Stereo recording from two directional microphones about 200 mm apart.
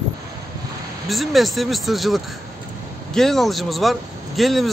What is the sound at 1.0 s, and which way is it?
Speech, centre (ahead or behind).